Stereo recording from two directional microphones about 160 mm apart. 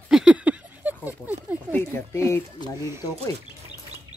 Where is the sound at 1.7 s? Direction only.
15° left (ahead or behind).